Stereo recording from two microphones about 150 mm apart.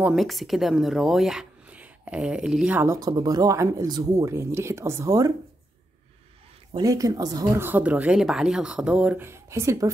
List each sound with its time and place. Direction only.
0.0 s speech: centre (ahead or behind); by 5.3 s 20° right (ahead or behind)
6.8 s speech: 25° right (ahead or behind)
7.6 s speech: 10° right (ahead or behind)